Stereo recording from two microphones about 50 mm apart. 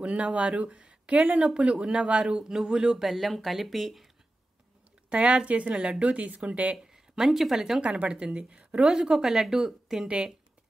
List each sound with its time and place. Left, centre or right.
0.0 s a woman's voice: right
3.0 s speech: centre
5.1 s a woman's voice: right
6.8 s speech: centre
7.8 s a woman's voice: right
10.0 s a woman's voice: right